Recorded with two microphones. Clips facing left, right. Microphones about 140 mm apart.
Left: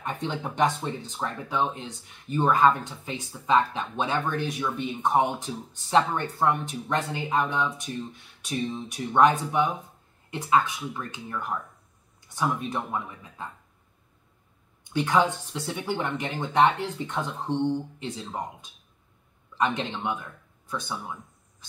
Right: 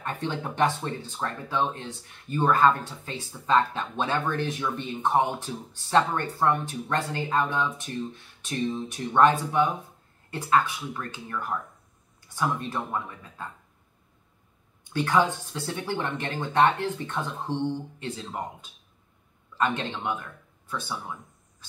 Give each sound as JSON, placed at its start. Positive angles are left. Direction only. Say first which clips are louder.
{"t": 0.0, "sound": "speech", "louder": "even", "side_deg": 15}
{"t": 12.5, "sound": "speech", "louder": "even", "side_deg": 10}
{"t": 14.9, "sound": "a man's voice", "louder": "even", "side_deg": 15}